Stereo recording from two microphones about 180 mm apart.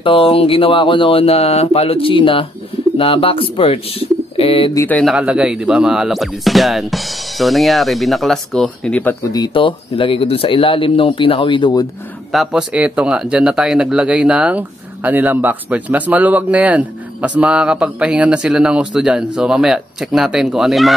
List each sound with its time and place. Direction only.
0.0 s speech: 30° left (ahead or behind)
4.7 s speech: 10° left (ahead or behind)
5.1 s speech: 5° right (ahead or behind)
9.2 s speech: 20° left (ahead or behind)
12.3 s speech: centre (ahead or behind)